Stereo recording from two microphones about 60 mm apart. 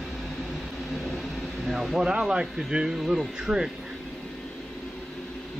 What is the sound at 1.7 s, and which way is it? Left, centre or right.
Speech, centre.